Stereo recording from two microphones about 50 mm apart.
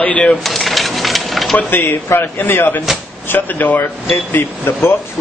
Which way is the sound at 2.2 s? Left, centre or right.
Left.